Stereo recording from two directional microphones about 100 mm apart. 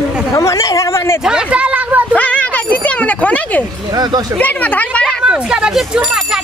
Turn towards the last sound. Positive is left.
turn(degrees=-10)  # may be behind; listen again after turning